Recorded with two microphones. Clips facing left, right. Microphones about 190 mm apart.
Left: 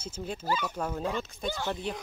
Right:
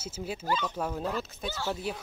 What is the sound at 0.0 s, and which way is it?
Speech, 5° right (ahead or behind).